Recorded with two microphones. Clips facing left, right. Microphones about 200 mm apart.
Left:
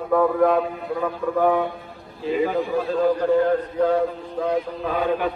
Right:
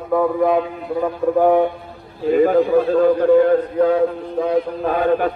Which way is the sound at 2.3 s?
50° right (ahead or behind).